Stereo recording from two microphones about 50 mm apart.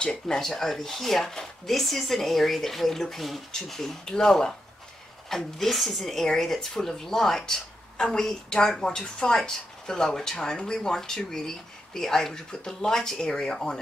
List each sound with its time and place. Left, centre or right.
0.0 s speech: centre
0.4 s speech: centre